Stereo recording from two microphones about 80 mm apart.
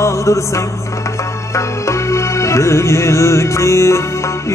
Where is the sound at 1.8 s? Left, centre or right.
Left.